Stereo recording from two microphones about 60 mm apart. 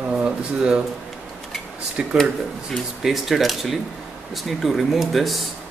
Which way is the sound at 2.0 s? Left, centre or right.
Centre.